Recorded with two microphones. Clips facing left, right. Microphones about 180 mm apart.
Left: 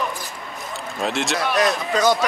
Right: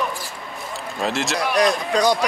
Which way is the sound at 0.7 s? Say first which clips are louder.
Even; centre (ahead or behind).